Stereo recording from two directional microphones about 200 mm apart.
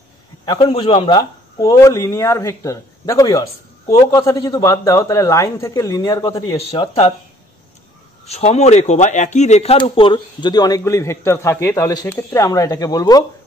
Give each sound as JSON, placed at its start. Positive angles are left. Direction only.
{"t": 0.5, "sound": "a man's voice", "side_deg": 25}
{"t": 6.7, "sound": "speech", "side_deg": 30}
{"t": 8.3, "sound": "speech", "side_deg": 35}